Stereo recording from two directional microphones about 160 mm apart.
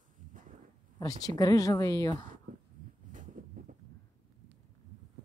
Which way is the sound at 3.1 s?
55° right (ahead or behind).